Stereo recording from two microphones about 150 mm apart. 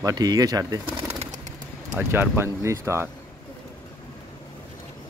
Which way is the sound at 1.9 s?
15° right (ahead or behind).